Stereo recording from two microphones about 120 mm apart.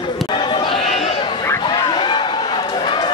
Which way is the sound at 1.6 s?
40° left (ahead or behind).